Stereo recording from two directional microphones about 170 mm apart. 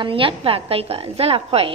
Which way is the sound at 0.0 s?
30° right (ahead or behind).